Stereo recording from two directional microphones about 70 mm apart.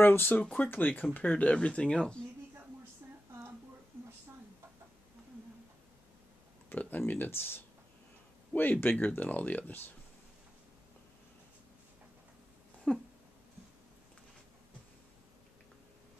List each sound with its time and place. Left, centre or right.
0.0 s speech: left; by 2.2 s centre
6.7 s speech: left
8.8 s speech: left
12.9 s a sound: centre